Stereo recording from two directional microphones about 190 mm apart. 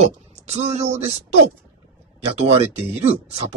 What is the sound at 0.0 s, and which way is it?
Speech, 35° right (ahead or behind).